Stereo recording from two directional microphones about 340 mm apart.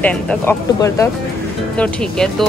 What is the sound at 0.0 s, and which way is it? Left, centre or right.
Speech, centre.